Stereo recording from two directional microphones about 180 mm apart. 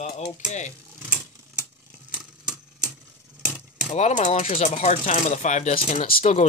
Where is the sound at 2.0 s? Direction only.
5° right (ahead or behind).